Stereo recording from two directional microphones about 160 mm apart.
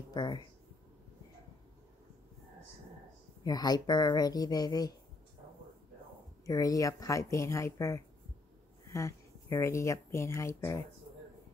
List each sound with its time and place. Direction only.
0.1 s speech: 25° left (ahead or behind)
3.4 s speech: 25° left (ahead or behind)
6.4 s speech: 20° left (ahead or behind)